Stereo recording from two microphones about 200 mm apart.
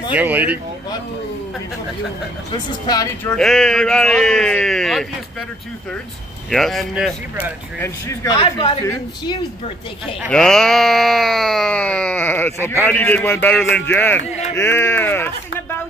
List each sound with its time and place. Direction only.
0.1 s speech: 10° right (ahead or behind)
2.5 s a woman's voice: 20° left (ahead or behind)
3.3 s sheep: 5° left (ahead or behind)
6.5 s sheep: centre (ahead or behind)
7.8 s a man's voice: 15° left (ahead or behind)
8.4 s a woman's voice: 25° left (ahead or behind)
10.3 s sheep: 5° left (ahead or behind)
12.6 s a man's voice: 10° left (ahead or behind)